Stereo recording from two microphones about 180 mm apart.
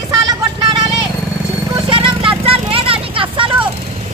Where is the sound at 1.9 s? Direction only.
30° right (ahead or behind).